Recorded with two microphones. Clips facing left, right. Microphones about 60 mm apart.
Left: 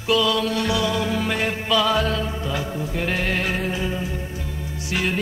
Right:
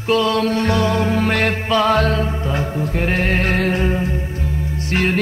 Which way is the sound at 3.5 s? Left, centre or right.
Right.